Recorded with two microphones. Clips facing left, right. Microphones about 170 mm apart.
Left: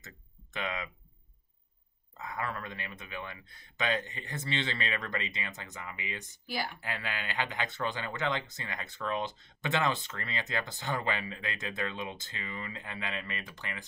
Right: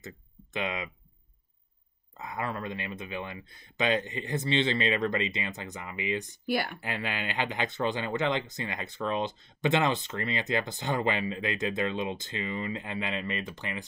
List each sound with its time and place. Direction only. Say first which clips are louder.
0.0 s a sound: right 9 dB; 20° right (ahead or behind)
2.1 s speech: right 3 dB; 20° right (ahead or behind)
6.4 s speech: right 6 dB; 60° right (ahead or behind)
6.8 s speech: right 4 dB; 20° right (ahead or behind)